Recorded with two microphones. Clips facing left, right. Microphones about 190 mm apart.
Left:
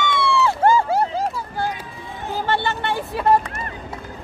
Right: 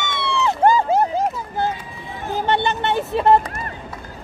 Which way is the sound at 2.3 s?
20° right (ahead or behind).